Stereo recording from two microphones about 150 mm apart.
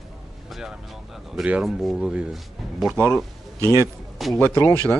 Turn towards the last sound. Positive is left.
turn(degrees=15)  # may be behind; listen again after turning